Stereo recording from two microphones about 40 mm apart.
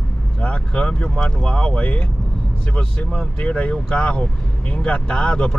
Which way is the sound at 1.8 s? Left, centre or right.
Left.